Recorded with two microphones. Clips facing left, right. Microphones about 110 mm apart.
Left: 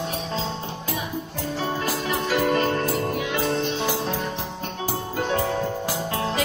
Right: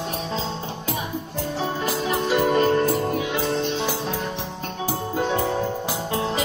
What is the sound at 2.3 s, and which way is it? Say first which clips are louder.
Music: right 2 dB; 10° right (ahead or behind).